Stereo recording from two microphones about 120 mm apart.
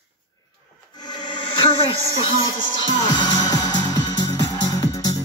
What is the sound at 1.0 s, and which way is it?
Music, 35° left (ahead or behind).